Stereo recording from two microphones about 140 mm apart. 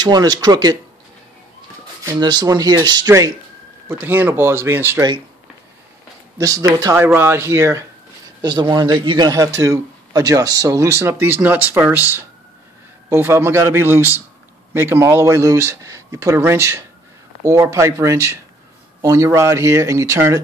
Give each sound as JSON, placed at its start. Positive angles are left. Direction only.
{"t": 0.0, "sound": "a man's voice", "side_deg": -30}
{"t": 2.0, "sound": "a man's voice", "side_deg": -30}
{"t": 4.0, "sound": "a man's voice", "side_deg": -15}
{"t": 6.3, "sound": "a man's voice", "side_deg": -25}
{"t": 8.4, "sound": "a man's voice", "side_deg": -30}